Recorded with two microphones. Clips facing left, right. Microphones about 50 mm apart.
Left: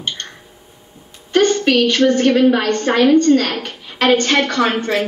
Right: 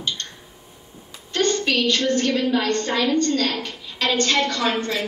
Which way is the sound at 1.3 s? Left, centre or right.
Left.